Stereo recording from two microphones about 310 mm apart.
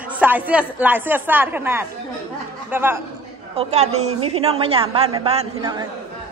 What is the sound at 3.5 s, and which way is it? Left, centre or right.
A woman's voice, right.